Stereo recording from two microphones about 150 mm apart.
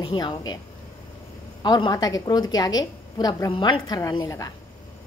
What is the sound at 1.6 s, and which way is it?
A woman's voice, 30° left (ahead or behind).